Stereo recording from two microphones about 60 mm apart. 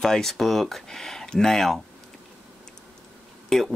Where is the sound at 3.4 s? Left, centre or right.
Centre.